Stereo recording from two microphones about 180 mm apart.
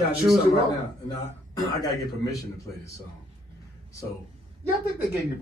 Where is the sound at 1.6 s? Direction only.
20° left (ahead or behind).